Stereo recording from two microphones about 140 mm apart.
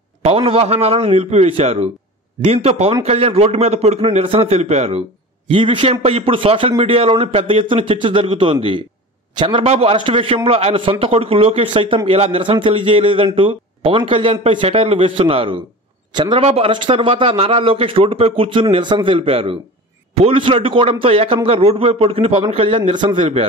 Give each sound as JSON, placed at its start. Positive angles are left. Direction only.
{"t": 0.2, "sound": "a man's voice", "side_deg": -45}
{"t": 16.3, "sound": "a man's voice", "side_deg": -45}